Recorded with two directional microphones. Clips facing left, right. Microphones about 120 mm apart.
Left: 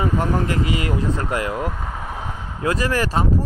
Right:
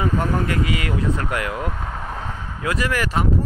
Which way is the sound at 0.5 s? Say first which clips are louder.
Left 1 dB; 30° left (ahead or behind).